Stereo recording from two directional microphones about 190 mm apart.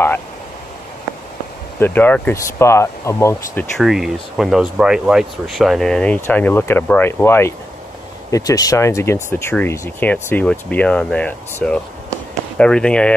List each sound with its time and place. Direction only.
1.8 s speech: 10° left (ahead or behind)
3.7 s speech: centre (ahead or behind)